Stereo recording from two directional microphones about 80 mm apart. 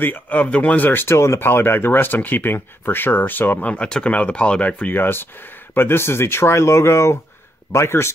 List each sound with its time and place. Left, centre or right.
0.0 s speech: left